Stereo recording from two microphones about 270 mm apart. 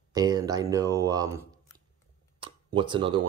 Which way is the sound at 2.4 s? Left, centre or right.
Centre.